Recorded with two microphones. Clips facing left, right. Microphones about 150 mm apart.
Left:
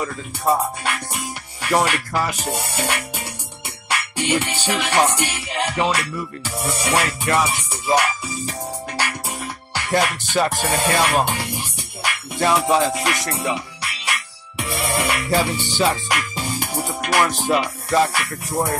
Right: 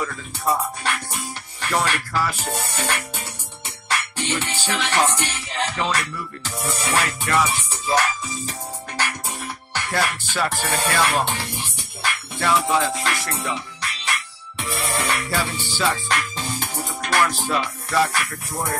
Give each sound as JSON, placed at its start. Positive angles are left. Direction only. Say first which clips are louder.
{"t": 0.8, "sound": "speech", "louder": "left 1 dB", "side_deg": 15}
{"t": 3.9, "sound": "music", "louder": "left 4 dB", "side_deg": 10}